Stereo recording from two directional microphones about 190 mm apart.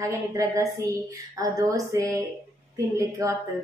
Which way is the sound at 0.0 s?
15° right (ahead or behind).